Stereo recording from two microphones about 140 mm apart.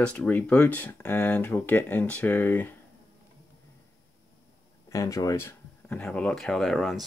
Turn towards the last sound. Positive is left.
turn(degrees=0)  # may be behind; listen again after turning